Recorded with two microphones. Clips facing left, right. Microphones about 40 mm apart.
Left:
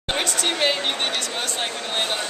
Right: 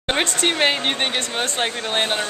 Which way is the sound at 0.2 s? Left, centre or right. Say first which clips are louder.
Right 3 dB; right.